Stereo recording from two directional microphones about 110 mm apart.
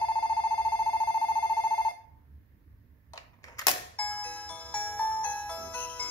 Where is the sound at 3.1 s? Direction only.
35° left (ahead or behind).